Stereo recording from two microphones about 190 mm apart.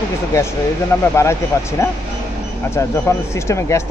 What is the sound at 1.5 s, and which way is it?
Speech, 15° left (ahead or behind).